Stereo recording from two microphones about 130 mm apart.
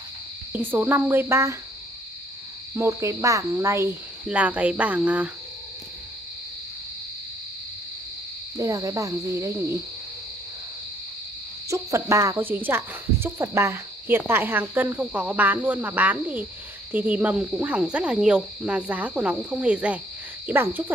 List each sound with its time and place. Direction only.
0.5 s cricket: 15° right (ahead or behind)
2.7 s cricket: 20° right (ahead or behind)
8.5 s cricket: 25° right (ahead or behind)
11.7 s cricket: 25° right (ahead or behind)